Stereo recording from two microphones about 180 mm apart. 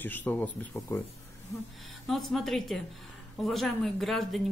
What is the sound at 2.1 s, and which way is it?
Speech, centre (ahead or behind).